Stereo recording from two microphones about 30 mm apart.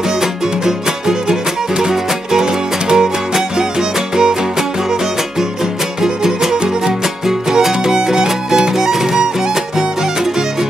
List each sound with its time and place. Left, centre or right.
0.2 s music: centre
4.2 s music: right
6.0 s music: right